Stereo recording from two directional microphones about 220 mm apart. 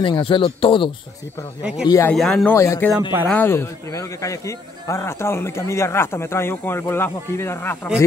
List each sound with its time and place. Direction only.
0.0 s speech: 25° left (ahead or behind)
1.9 s a man's voice: 15° left (ahead or behind)
2.1 s a man's voice: centre (ahead or behind)